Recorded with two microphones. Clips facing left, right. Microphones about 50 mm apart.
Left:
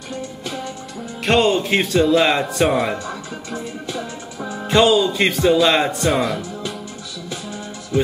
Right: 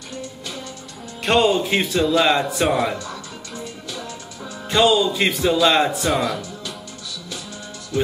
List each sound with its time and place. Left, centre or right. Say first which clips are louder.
1.2 s speech: left 1 dB; centre
3.8 s music: left 4 dB; left
4.6 s speech: left 2 dB; centre
7.9 s music: left 3 dB; centre